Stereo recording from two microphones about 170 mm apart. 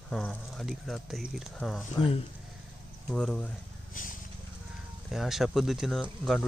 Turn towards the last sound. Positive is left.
turn(degrees=0)  # may be behind; listen again after turning